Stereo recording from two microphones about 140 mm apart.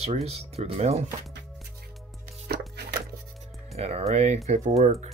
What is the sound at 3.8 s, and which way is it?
Speech, 45° right (ahead or behind).